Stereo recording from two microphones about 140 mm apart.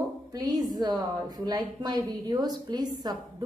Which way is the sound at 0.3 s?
25° right (ahead or behind).